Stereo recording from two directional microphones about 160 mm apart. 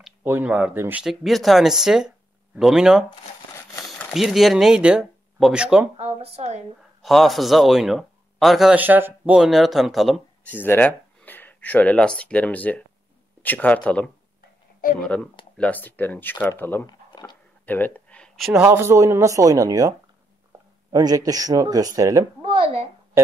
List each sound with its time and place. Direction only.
0.0 s speech: 10° right (ahead or behind)
1.0 s speech: centre (ahead or behind)
4.1 s a man's voice: centre (ahead or behind)
5.9 s speech: 40° right (ahead or behind)
7.0 s a man's voice: centre (ahead or behind)
10.5 s a man's voice: 10° left (ahead or behind)
16.8 s a sound: 25° left (ahead or behind)
17.6 s a sound: 10° left (ahead or behind)
18.7 s speech: 15° right (ahead or behind)
22.4 s a sound: 35° right (ahead or behind)